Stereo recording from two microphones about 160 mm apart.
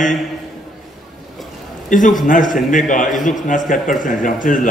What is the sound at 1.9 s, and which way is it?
A man's voice, 55° left (ahead or behind).